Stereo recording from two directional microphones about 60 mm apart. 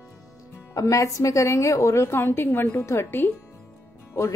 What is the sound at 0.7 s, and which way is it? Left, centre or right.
A woman's voice, left.